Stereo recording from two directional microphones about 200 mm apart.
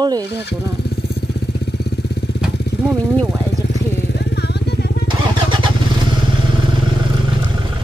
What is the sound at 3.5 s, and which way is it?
Vehicle, 55° left (ahead or behind).